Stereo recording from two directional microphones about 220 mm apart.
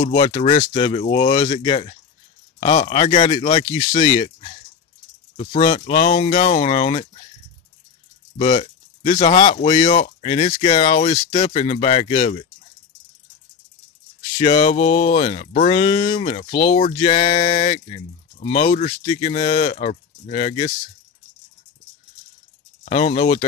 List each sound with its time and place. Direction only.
0.0 s speech: 30° left (ahead or behind)
8.4 s speech: 30° left (ahead or behind)
14.4 s speech: 25° left (ahead or behind)
22.8 s speech: 30° left (ahead or behind)